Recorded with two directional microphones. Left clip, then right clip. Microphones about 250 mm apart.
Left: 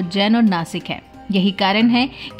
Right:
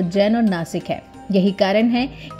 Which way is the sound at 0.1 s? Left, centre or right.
Centre.